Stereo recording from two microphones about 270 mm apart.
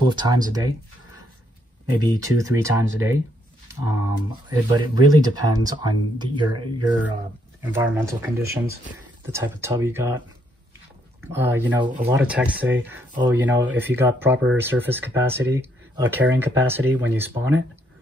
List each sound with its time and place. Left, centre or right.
0.1 s speech: centre
2.0 s speech: centre
11.2 s speech: centre